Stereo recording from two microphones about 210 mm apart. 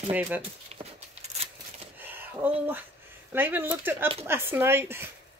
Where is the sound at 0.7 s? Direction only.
30° right (ahead or behind).